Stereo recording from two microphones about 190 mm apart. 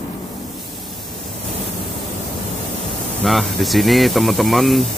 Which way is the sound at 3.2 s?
Centre (ahead or behind).